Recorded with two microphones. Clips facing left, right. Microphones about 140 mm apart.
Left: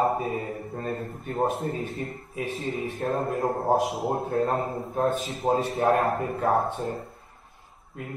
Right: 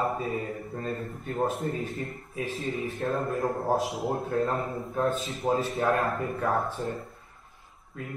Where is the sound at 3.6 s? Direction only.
20° left (ahead or behind).